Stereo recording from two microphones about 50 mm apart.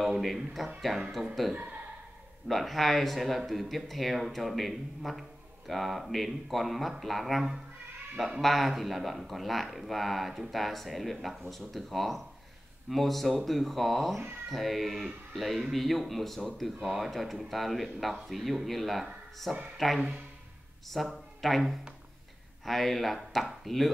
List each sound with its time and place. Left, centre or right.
0.2 s speech: centre
1.5 s speech: right
2.4 s a man's voice: centre